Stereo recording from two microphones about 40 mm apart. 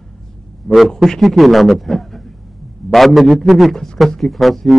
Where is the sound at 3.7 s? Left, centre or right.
Centre.